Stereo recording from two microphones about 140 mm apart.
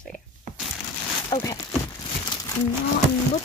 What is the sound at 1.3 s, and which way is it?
Speech, 25° left (ahead or behind).